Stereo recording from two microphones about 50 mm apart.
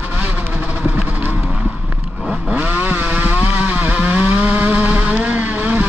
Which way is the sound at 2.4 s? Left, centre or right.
Right.